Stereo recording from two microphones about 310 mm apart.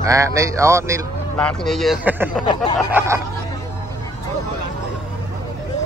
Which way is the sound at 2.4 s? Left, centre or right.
Centre.